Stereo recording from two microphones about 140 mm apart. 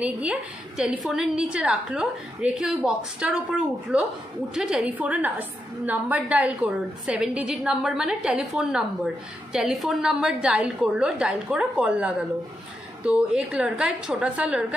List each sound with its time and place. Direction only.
0.0 s a woman's voice: 10° right (ahead or behind)